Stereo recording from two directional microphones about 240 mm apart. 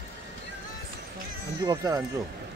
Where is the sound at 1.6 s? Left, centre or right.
Centre.